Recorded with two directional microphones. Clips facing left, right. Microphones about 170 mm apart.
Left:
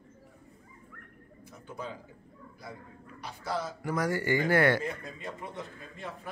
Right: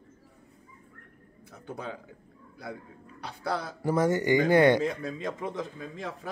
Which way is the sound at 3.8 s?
25° right (ahead or behind).